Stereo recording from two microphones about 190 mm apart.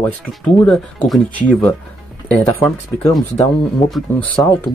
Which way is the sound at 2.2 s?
15° left (ahead or behind).